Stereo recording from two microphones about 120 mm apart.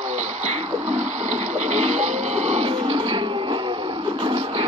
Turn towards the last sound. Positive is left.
turn(degrees=-50)  # may be behind; listen again after turning